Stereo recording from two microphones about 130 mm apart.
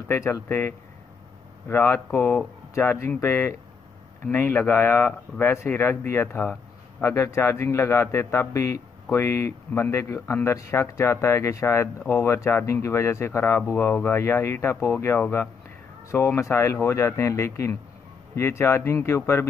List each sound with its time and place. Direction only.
0.1 s speech: 20° left (ahead or behind)